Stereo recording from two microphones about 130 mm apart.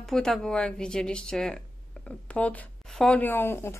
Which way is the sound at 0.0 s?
Centre (ahead or behind).